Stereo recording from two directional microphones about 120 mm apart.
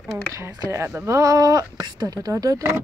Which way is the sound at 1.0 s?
30° right (ahead or behind).